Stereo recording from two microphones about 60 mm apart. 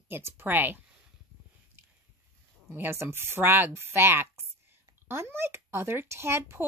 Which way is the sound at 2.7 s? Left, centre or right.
Right.